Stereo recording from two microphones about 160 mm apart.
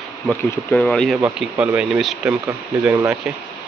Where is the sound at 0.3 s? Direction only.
5° left (ahead or behind).